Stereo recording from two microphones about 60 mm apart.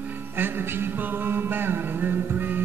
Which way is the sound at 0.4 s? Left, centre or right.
Right.